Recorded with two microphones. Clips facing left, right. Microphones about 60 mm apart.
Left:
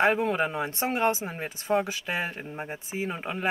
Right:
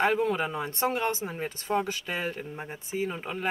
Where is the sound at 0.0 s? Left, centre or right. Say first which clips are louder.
Left 2 dB; left.